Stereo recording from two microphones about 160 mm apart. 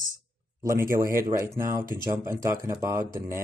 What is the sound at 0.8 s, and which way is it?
Speech, 20° right (ahead or behind).